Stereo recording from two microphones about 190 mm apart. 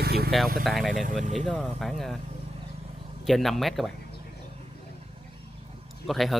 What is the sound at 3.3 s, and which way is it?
Speech, centre (ahead or behind).